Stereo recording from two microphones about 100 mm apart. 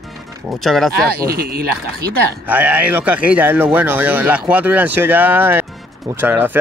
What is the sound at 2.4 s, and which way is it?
A man's voice, 15° right (ahead or behind).